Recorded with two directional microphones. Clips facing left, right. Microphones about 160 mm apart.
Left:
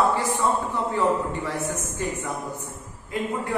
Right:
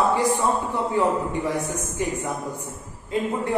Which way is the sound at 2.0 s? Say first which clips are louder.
Right 5 dB; 15° right (ahead or behind).